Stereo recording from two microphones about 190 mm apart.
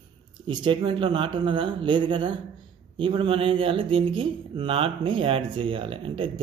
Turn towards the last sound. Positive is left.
turn(degrees=-30)  # may be behind; listen again after turning